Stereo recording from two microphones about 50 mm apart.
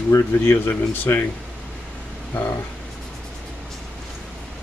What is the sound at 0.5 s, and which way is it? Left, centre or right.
Speech, left.